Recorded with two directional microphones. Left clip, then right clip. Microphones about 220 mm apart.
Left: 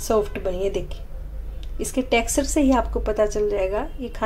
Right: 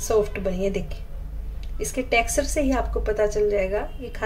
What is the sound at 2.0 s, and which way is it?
A woman's voice, 25° left (ahead or behind).